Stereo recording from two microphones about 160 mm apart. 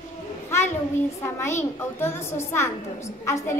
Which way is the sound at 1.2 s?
15° left (ahead or behind).